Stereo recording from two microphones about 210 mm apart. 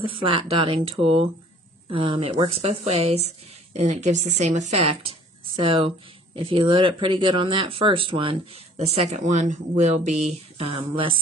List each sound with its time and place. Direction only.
0.0 s speech: 25° right (ahead or behind)